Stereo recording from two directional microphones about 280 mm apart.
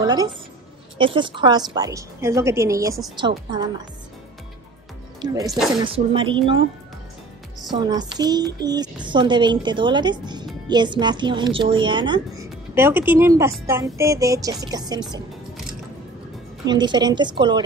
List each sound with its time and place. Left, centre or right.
0.0 s a woman's voice: centre
5.2 s speech: centre
7.7 s speech: centre
16.6 s speech: centre